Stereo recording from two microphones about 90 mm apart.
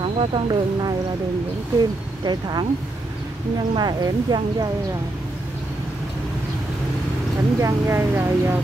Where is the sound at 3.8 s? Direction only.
50° right (ahead or behind).